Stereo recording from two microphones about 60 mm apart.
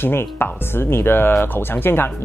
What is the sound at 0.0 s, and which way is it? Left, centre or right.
Speech, left.